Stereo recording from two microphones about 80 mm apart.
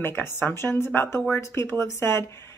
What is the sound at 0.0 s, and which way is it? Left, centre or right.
Speech, left.